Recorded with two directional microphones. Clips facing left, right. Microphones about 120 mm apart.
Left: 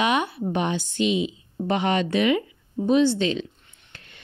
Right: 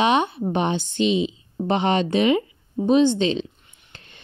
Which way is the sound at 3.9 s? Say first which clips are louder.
Right 1 dB; 25° right (ahead or behind).